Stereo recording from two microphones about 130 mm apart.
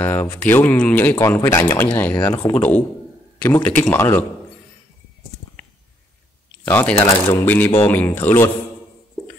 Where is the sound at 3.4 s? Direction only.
15° left (ahead or behind).